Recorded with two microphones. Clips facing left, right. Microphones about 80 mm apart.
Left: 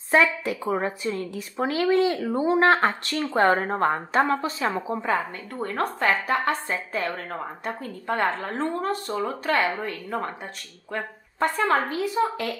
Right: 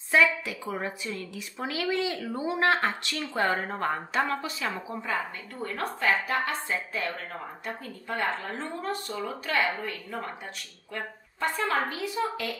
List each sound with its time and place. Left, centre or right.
0.1 s a woman's voice: left